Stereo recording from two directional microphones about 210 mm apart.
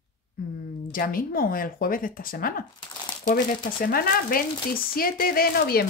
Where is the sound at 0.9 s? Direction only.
45° left (ahead or behind).